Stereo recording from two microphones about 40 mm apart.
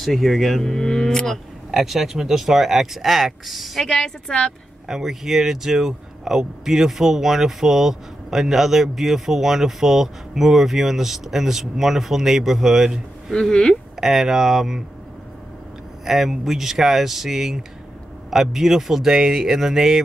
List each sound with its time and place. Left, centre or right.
0.0 s livestock: centre
1.7 s speech: centre
3.8 s a woman's voice: centre
4.8 s speech: centre
13.3 s livestock: centre
13.9 s speech: centre
16.1 s speech: centre